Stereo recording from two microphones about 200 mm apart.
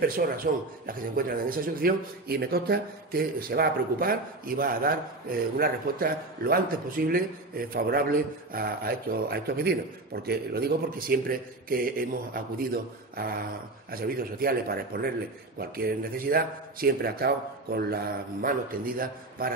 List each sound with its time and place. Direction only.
0.0 s a man's voice: 45° right (ahead or behind)